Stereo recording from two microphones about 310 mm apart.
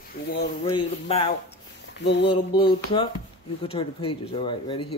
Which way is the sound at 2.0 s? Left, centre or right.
Left.